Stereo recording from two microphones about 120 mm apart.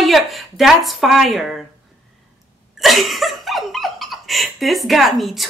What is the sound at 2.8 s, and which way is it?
Speech, centre (ahead or behind).